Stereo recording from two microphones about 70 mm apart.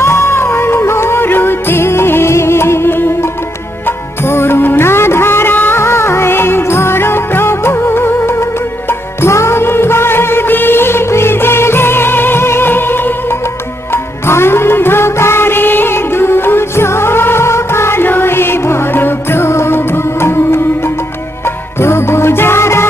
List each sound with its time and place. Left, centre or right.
0.0 s music: left
21.7 s music: left